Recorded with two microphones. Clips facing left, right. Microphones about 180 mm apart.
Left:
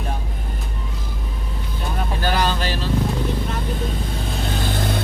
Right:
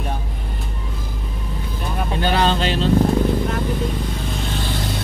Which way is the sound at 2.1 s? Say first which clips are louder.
Right 3 dB; 25° right (ahead or behind).